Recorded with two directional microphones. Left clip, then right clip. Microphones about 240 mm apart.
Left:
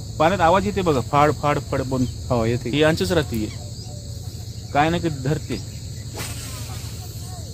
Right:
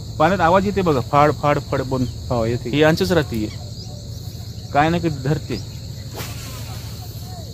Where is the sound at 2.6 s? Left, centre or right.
Centre.